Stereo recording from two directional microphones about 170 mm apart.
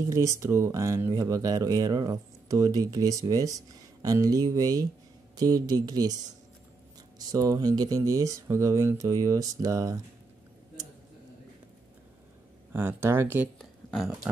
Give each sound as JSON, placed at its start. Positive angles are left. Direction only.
{"t": 0.1, "sound": "speech", "side_deg": -15}
{"t": 12.7, "sound": "speech", "side_deg": -15}
{"t": 13.6, "sound": "speech", "side_deg": 0}